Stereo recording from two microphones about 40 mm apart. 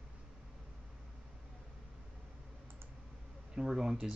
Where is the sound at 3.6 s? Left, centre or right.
Centre.